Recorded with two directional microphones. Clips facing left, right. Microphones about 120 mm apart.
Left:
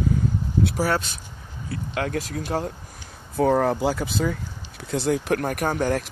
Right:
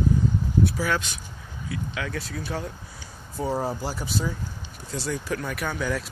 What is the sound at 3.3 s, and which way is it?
Speech, 60° left (ahead or behind).